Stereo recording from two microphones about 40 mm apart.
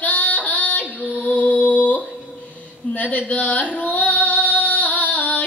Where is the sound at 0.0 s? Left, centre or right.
Left.